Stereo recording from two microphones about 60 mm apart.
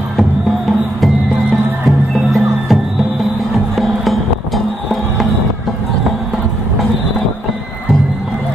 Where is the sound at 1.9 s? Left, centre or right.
Centre.